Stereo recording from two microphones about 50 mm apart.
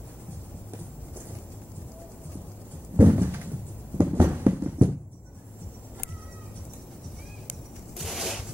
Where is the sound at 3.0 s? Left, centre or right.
Right.